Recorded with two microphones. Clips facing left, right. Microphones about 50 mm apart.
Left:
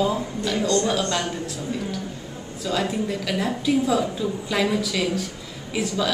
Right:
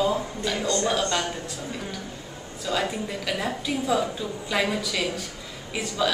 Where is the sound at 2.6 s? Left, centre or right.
Centre.